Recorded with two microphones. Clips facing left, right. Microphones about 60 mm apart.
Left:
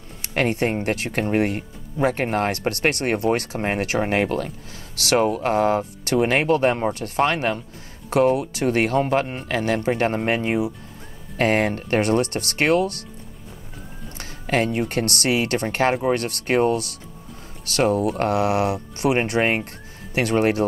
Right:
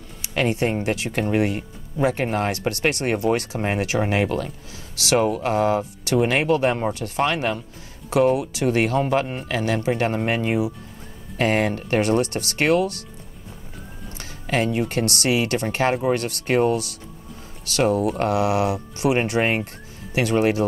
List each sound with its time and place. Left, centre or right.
0.2 s speech: left
14.1 s speech: left